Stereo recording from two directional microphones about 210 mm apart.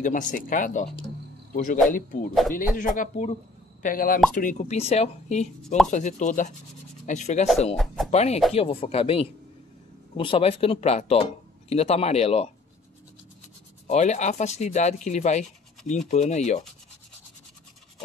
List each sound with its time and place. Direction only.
0.0 s speech: 40° left (ahead or behind)
7.7 s speech: centre (ahead or behind)
8.1 s speech: 30° left (ahead or behind)
13.8 s speech: 35° left (ahead or behind)